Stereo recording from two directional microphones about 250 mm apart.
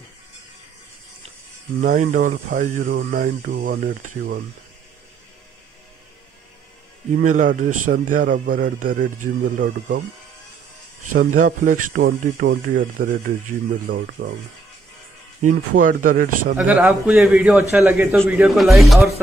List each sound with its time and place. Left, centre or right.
1.8 s speech: right
7.2 s speech: right
11.3 s speech: right
15.4 s speech: right
16.5 s a man's voice: centre